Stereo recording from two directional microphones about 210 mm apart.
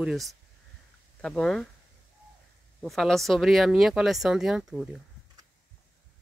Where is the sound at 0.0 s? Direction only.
Centre (ahead or behind).